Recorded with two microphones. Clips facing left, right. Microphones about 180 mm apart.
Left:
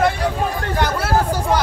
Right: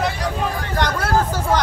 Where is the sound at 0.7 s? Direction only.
10° left (ahead or behind).